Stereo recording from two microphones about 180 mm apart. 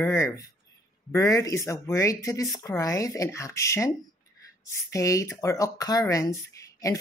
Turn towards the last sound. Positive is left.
turn(degrees=15)  # may be behind; listen again after turning